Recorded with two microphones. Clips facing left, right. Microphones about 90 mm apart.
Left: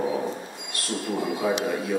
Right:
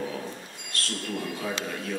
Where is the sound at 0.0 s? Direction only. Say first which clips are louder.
Left 7 dB; 25° left (ahead or behind).